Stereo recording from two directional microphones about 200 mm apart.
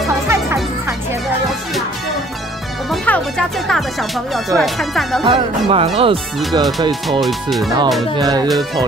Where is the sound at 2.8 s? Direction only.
5° left (ahead or behind).